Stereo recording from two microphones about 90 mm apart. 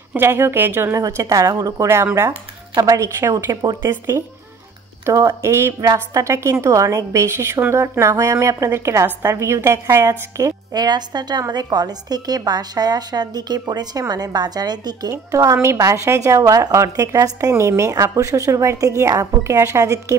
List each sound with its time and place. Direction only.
0.2 s a woman's voice: 25° right (ahead or behind)
0.9 s a woman's voice: 40° right (ahead or behind)
3.2 s a woman's voice: 25° right (ahead or behind)
3.4 s speech: 45° right (ahead or behind)
5.0 s a woman's voice: 30° right (ahead or behind)
10.7 s a woman's voice: 50° right (ahead or behind)